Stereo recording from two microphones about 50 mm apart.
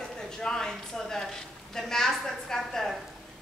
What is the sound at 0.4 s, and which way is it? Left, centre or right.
A woman's voice, centre.